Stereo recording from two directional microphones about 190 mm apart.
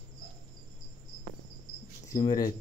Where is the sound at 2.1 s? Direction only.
20° left (ahead or behind).